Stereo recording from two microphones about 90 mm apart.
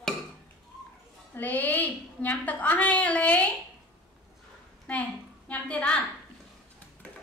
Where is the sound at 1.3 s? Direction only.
20° left (ahead or behind).